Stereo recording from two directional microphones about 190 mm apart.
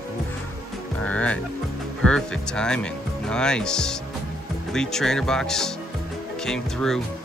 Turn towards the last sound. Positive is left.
turn(degrees=0)  # may be behind; listen again after turning